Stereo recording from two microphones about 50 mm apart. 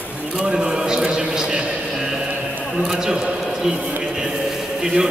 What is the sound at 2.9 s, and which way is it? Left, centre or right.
Speech, centre.